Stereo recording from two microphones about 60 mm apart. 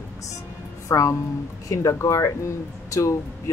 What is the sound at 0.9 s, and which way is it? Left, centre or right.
Speech, left.